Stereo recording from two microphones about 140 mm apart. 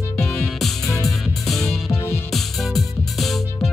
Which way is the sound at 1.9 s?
20° left (ahead or behind).